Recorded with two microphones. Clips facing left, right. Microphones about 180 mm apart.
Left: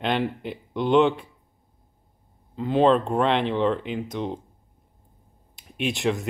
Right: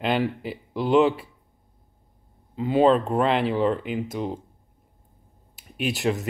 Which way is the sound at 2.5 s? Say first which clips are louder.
Right 1 dB; 5° right (ahead or behind).